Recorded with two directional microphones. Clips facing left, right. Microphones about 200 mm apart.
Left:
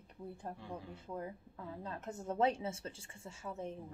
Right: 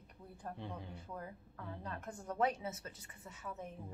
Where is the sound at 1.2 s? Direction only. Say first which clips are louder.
Left 4 dB; 25° left (ahead or behind).